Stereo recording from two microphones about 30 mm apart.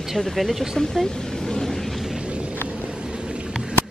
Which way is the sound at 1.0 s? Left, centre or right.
Centre.